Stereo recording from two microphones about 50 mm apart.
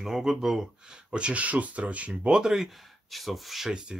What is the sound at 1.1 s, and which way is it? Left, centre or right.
Speech, right.